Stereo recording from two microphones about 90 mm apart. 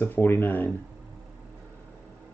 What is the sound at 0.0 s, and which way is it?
Speech, 25° left (ahead or behind).